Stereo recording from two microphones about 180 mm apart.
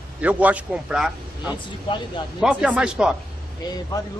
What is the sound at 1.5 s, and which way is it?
Speech, 25° left (ahead or behind).